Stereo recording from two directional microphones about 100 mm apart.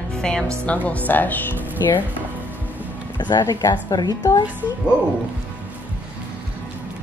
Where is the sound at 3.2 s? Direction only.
40° left (ahead or behind).